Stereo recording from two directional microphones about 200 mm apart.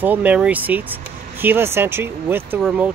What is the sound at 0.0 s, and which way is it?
Speech, 10° right (ahead or behind).